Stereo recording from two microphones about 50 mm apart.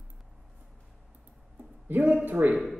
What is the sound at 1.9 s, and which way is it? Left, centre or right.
Speech, right.